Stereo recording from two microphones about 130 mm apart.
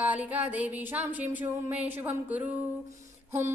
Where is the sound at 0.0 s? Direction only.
10° right (ahead or behind).